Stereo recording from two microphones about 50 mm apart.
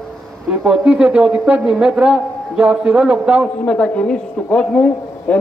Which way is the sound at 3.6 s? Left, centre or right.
Left.